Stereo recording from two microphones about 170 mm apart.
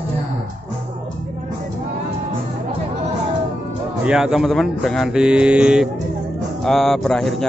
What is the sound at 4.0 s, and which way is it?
Speech, 5° right (ahead or behind).